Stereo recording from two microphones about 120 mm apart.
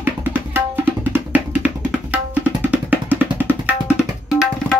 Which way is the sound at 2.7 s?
15° right (ahead or behind).